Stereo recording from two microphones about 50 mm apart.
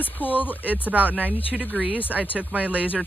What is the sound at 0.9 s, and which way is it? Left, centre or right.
Speech, right.